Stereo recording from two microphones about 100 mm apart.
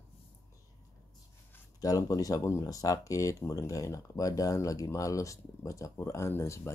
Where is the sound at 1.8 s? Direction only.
35° left (ahead or behind).